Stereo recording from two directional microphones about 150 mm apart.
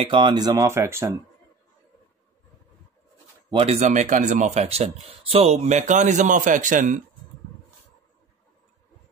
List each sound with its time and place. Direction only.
0.0 s speech: 35° right (ahead or behind); by 1.1 s 15° right (ahead or behind)
3.4 s speech: 40° right (ahead or behind); by 7.0 s 60° right (ahead or behind)